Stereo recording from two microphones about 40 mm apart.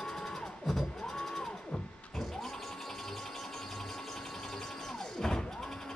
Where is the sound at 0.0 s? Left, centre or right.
Centre.